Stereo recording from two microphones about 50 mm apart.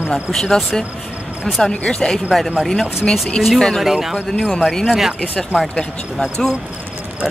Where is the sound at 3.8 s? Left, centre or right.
Centre.